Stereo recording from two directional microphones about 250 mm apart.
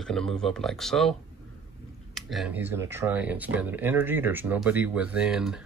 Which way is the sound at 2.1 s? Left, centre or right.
Centre.